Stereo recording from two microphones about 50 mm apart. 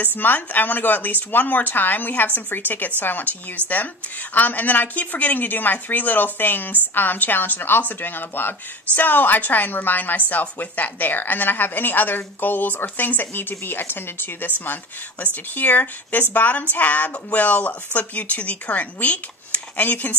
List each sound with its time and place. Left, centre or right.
0.0 s a woman's voice: left
15.5 s a woman's voice: left